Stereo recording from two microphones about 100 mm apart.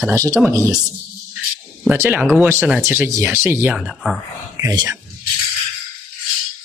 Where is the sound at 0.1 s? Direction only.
35° right (ahead or behind).